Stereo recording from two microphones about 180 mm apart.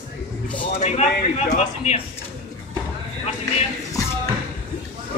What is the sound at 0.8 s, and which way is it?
Speech, 40° left (ahead or behind).